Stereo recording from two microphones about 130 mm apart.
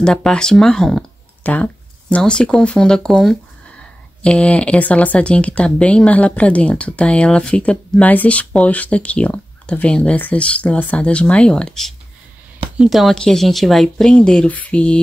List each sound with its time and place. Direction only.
0.0 s speech: 5° left (ahead or behind)